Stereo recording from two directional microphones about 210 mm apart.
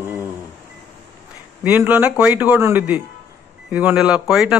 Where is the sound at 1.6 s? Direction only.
5° right (ahead or behind).